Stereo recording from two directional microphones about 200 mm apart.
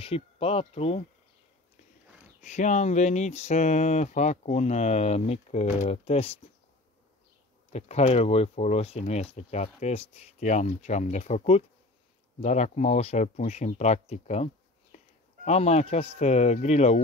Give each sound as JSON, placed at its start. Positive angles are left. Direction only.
{"t": 0.0, "sound": "speech", "side_deg": 30}
{"t": 2.4, "sound": "speech", "side_deg": 35}
{"t": 7.7, "sound": "speech", "side_deg": 30}